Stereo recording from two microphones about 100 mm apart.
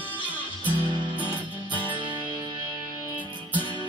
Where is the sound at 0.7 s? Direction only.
55° left (ahead or behind).